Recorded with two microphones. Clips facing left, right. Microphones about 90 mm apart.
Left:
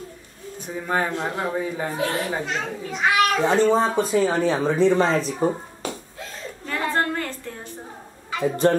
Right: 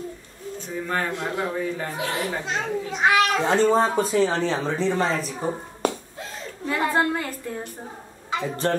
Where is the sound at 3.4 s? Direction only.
Centre (ahead or behind); by 5.3 s 20° left (ahead or behind).